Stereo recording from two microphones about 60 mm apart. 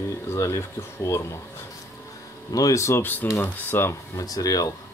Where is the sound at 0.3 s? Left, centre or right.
Left.